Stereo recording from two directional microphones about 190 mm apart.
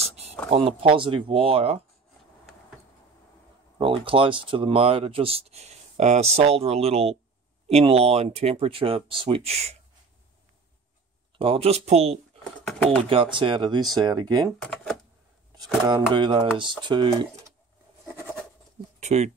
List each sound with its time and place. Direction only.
0.5 s speech: 30° right (ahead or behind)
3.7 s speech: 25° right (ahead or behind)
11.3 s speech: 30° right (ahead or behind)
12.6 s speech: 5° left (ahead or behind)
13.1 s speech: 25° right (ahead or behind)
15.5 s speech: 20° right (ahead or behind)
18.9 s speech: 35° right (ahead or behind)